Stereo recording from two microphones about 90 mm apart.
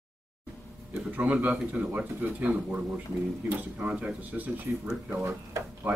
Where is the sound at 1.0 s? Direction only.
15° right (ahead or behind).